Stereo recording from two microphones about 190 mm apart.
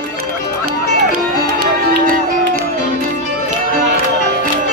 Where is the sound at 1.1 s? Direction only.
50° right (ahead or behind).